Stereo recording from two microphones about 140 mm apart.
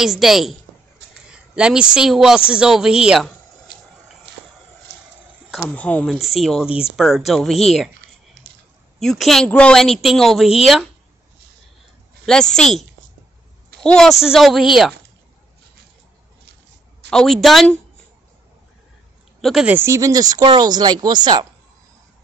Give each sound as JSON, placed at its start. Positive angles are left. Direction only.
{"t": 0.0, "sound": "speech", "side_deg": 0}
{"t": 5.7, "sound": "speech", "side_deg": 10}
{"t": 6.1, "sound": "speech", "side_deg": 0}
{"t": 9.0, "sound": "speech", "side_deg": 0}
{"t": 12.3, "sound": "speech", "side_deg": 5}
{"t": 13.8, "sound": "speech", "side_deg": 5}
{"t": 17.1, "sound": "speech", "side_deg": 5}
{"t": 19.4, "sound": "speech", "side_deg": 0}
{"t": 19.7, "sound": "speech", "side_deg": -20}